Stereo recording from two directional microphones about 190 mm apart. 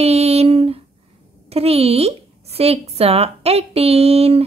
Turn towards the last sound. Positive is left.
turn(degrees=-30)  # may be behind; listen again after turning